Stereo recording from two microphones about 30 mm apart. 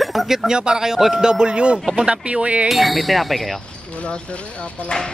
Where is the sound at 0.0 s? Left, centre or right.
Centre.